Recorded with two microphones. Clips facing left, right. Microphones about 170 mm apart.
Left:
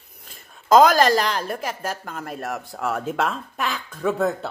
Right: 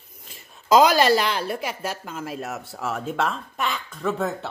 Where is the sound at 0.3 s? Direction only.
50° left (ahead or behind).